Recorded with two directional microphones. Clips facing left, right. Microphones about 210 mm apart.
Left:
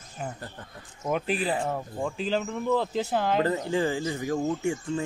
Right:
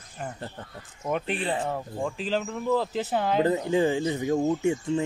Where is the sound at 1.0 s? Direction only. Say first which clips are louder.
Left 1 dB; centre (ahead or behind).